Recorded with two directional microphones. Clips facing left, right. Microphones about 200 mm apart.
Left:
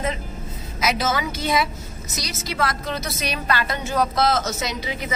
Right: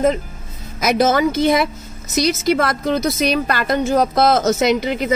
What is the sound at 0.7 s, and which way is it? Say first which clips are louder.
A woman's voice: right 8 dB; 50° right (ahead or behind).